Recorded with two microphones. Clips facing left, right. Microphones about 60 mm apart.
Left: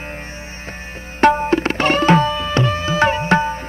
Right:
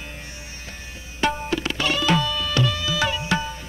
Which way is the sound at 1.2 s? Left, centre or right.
Left.